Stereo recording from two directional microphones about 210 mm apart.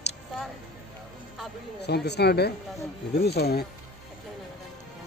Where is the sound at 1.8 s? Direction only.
50° left (ahead or behind).